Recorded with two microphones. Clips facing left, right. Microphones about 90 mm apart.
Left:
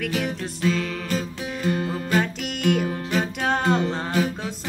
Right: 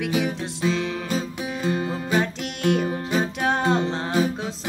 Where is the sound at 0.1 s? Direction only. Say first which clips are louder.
Right 2 dB; 15° right (ahead or behind).